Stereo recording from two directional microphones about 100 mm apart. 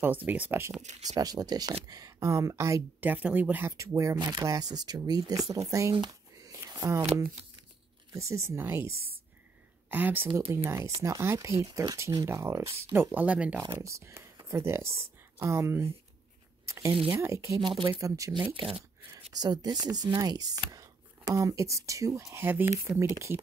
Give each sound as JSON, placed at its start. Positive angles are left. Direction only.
{"t": 0.0, "sound": "speech", "side_deg": -15}
{"t": 1.0, "sound": "speech", "side_deg": -40}
{"t": 3.0, "sound": "speech", "side_deg": -15}
{"t": 3.7, "sound": "speech", "side_deg": -30}
{"t": 5.9, "sound": "a sound", "side_deg": -40}
{"t": 8.1, "sound": "speech", "side_deg": -30}
{"t": 13.7, "sound": "speech", "side_deg": -30}
{"t": 16.6, "sound": "a sound", "side_deg": -30}
{"t": 16.9, "sound": "speech", "side_deg": -65}
{"t": 17.2, "sound": "speech", "side_deg": -30}
{"t": 17.6, "sound": "speech", "side_deg": -55}
{"t": 18.0, "sound": "speech", "side_deg": -35}
{"t": 18.3, "sound": "speech", "side_deg": -60}
{"t": 19.3, "sound": "speech", "side_deg": -45}